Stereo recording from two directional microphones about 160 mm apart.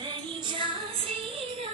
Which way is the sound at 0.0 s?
30° right (ahead or behind).